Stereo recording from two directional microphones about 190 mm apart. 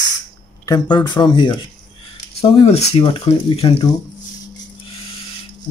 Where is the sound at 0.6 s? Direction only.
20° left (ahead or behind).